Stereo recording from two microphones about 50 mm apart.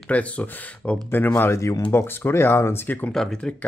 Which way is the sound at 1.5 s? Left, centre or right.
Left.